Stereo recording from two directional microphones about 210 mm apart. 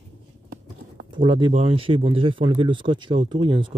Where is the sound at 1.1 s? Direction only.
20° right (ahead or behind).